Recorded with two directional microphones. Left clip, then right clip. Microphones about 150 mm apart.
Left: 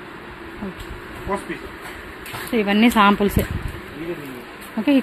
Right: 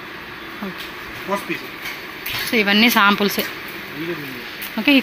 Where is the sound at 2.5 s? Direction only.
10° left (ahead or behind).